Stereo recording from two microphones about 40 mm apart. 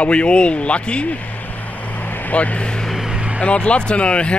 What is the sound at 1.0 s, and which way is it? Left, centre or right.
Vehicle, left.